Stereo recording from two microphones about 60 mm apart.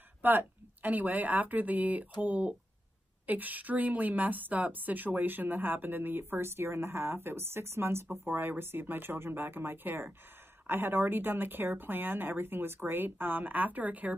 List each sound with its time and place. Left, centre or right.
0.2 s a woman's voice: right